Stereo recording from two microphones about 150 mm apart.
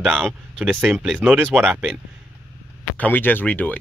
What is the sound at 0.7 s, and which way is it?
Speech, 15° right (ahead or behind).